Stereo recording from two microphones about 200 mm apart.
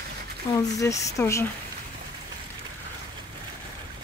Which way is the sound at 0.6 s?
15° left (ahead or behind).